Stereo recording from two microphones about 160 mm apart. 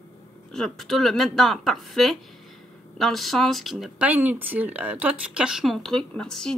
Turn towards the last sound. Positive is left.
turn(degrees=5)  # may be behind; listen again after turning